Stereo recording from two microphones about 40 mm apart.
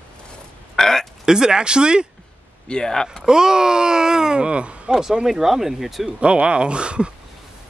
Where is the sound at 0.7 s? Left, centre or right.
Centre.